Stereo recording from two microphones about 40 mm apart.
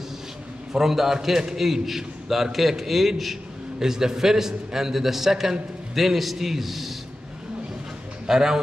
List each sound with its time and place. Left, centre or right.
0.7 s a man's voice: centre
3.8 s a man's voice: centre
8.3 s a man's voice: centre